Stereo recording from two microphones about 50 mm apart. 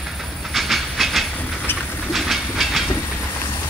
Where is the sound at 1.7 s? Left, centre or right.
Left.